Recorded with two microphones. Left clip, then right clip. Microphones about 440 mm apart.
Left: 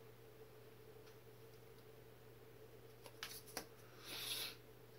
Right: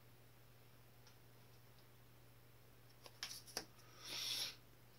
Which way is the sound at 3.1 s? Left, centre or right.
Centre.